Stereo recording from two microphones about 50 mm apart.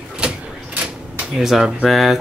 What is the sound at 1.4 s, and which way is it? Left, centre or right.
Speech, centre.